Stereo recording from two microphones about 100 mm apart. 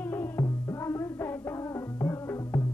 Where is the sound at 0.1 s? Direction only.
20° left (ahead or behind).